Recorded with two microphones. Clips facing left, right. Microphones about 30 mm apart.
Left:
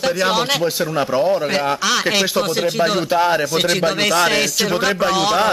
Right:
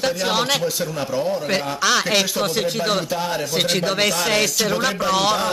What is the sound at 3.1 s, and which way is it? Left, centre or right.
Speech, left.